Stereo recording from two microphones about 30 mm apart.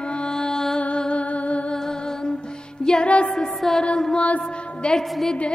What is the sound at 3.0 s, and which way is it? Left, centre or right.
Music, left.